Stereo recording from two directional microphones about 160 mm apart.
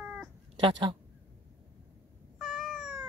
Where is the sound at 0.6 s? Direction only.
30° right (ahead or behind).